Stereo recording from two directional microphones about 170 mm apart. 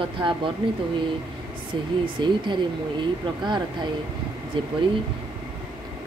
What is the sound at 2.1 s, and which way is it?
Speech, 30° right (ahead or behind).